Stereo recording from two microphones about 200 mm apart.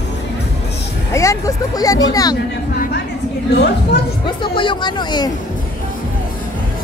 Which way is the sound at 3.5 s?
55° left (ahead or behind).